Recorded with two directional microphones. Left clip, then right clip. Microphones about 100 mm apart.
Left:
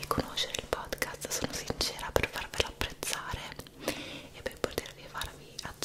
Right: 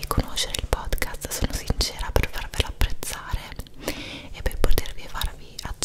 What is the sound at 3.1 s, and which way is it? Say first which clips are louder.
Whispering: right 2 dB; 5° right (ahead or behind).